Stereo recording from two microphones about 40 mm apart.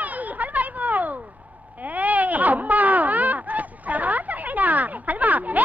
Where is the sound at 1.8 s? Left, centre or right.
Right.